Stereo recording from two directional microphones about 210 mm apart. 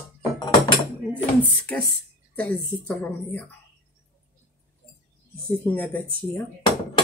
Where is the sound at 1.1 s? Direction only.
10° left (ahead or behind).